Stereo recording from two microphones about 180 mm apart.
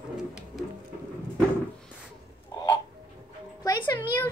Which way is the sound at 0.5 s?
Centre (ahead or behind).